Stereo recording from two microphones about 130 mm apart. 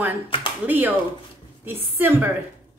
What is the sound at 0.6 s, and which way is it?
A woman's voice, 15° right (ahead or behind).